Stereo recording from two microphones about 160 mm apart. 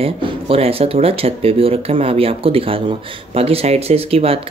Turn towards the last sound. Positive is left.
turn(degrees=-40)  # may be behind; listen again after turning